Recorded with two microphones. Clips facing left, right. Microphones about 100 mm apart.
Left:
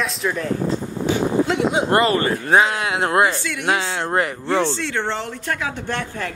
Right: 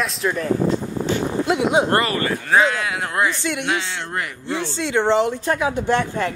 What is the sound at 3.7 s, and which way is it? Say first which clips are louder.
Speech: left 4 dB; 35° left (ahead or behind).